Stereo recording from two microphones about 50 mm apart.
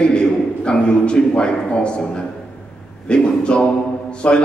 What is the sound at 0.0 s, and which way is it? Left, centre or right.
A man's voice, centre.